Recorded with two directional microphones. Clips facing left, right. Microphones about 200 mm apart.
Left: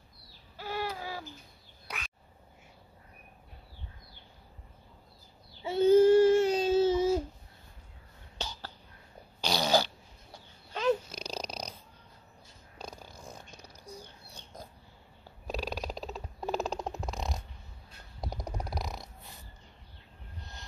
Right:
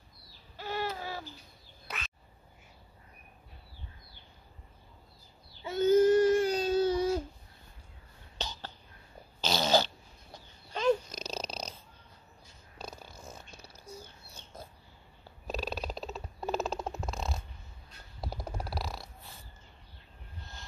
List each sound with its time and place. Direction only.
0.6 s a sound: 10° left (ahead or behind)
1.9 s duck: 10° left (ahead or behind)
5.7 s child singing: 30° left (ahead or behind)
8.4 s cough: 10° left (ahead or behind)
9.4 s dog: 15° left (ahead or behind)
12.7 s a sound: 15° left (ahead or behind)
15.4 s purr: 10° left (ahead or behind)